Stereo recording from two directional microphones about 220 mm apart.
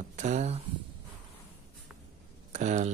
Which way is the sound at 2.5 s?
30° right (ahead or behind).